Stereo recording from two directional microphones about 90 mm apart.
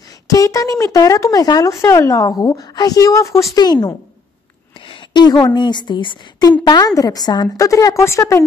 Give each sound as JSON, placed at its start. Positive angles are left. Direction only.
{"t": 0.3, "sound": "speech", "side_deg": 40}
{"t": 3.5, "sound": "a woman's voice", "side_deg": 50}
{"t": 4.8, "sound": "speech", "side_deg": 65}
{"t": 7.0, "sound": "speech", "side_deg": 45}